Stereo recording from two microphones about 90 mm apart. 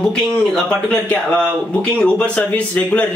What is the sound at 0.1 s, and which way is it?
Speech, 10° left (ahead or behind).